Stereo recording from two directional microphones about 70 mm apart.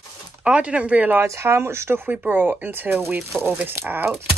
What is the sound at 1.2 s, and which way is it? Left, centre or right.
Speech, right.